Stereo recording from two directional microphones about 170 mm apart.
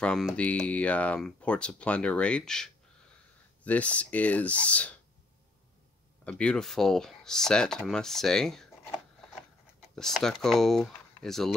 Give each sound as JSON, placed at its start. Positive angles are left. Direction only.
{"t": 0.0, "sound": "speech", "side_deg": 5}
{"t": 6.2, "sound": "speech", "side_deg": 5}
{"t": 9.9, "sound": "speech", "side_deg": 0}